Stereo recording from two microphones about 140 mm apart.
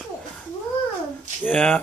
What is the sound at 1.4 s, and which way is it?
Speech, centre (ahead or behind).